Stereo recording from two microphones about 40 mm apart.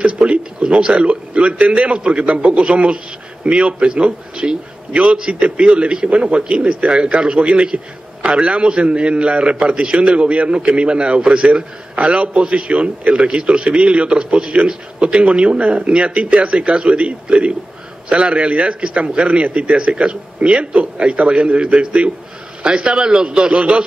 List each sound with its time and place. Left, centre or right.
0.0 s a man's voice: right